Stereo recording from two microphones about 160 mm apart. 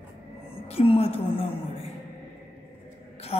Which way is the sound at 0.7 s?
35° left (ahead or behind).